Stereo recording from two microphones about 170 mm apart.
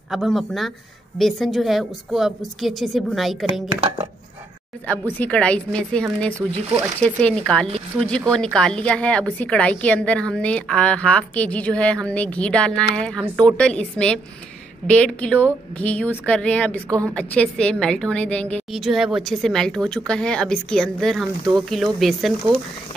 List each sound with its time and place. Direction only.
0.1 s a woman's voice: centre (ahead or behind)
4.8 s a woman's voice: 10° left (ahead or behind)
7.6 s speech: 35° right (ahead or behind)
8.3 s a woman's voice: 5° left (ahead or behind)